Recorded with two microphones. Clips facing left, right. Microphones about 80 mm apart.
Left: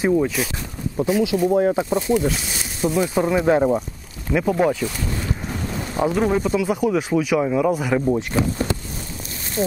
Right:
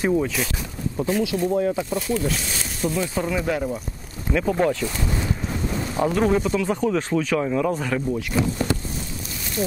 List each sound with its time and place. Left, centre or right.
0.0 s speech: centre
1.7 s speech: left
4.3 s speech: centre
5.9 s speech: centre
8.1 s speech: left
9.6 s speech: left